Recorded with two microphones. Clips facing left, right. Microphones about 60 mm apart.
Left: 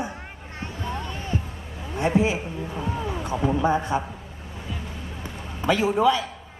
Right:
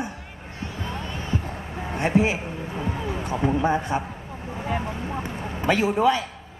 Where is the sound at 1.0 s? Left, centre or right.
Right.